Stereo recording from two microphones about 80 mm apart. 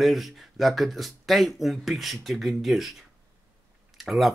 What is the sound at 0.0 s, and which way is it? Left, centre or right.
Speech, centre.